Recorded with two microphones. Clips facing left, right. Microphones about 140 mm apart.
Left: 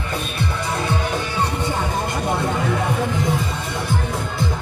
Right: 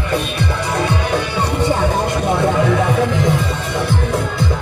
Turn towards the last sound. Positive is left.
turn(degrees=-85)